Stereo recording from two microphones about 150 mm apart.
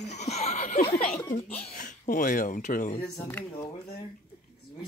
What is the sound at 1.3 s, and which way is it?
Speech, 50° left (ahead or behind).